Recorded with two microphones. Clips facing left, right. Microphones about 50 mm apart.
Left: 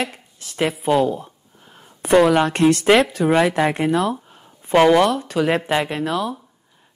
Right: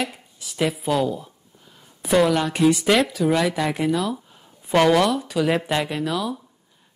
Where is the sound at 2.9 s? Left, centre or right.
Left.